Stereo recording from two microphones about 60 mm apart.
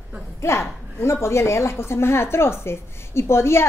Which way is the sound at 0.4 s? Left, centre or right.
Left.